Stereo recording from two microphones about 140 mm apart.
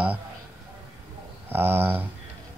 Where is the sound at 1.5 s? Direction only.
15° right (ahead or behind).